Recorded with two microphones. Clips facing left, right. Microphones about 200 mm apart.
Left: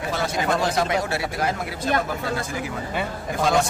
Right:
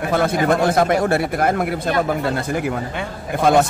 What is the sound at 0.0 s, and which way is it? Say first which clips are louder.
A man's voice: right 7 dB; 55° right (ahead or behind).